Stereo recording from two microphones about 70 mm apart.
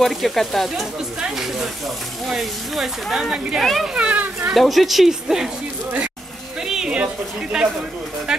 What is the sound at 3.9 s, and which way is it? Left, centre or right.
Speech, centre.